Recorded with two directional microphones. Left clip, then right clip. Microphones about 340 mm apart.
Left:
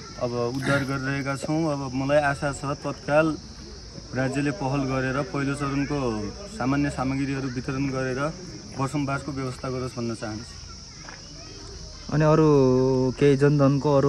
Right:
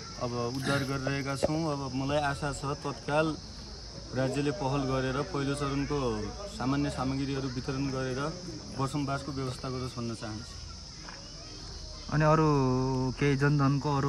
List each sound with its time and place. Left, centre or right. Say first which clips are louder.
0.2 s speech: left 7 dB; centre
12.1 s speech: left 6 dB; centre